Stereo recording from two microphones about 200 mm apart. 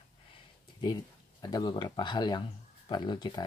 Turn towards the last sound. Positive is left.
turn(degrees=20)  # may be behind; listen again after turning